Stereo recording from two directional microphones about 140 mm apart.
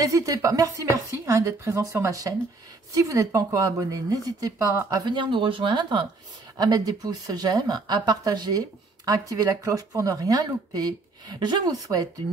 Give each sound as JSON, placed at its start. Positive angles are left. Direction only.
{"t": 0.0, "sound": "speech", "side_deg": -25}